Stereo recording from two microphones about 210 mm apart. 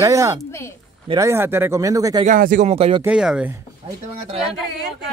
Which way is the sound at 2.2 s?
40° right (ahead or behind).